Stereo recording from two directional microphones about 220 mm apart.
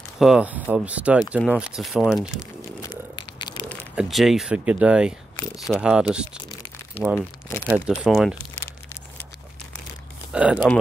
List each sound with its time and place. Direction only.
0.2 s speech: 5° right (ahead or behind)
2.8 s a sound: 20° left (ahead or behind)
3.6 s speech: centre (ahead or behind)
7.2 s speech: 10° left (ahead or behind)
7.6 s speech: 10° right (ahead or behind)
10.3 s speech: 5° right (ahead or behind)